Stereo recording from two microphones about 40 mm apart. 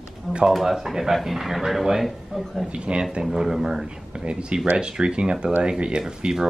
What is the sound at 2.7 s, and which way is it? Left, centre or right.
Speech, right.